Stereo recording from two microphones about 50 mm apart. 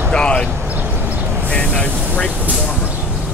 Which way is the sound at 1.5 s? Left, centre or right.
Centre.